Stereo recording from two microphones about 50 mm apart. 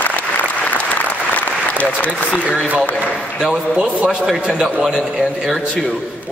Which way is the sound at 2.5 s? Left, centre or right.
Right.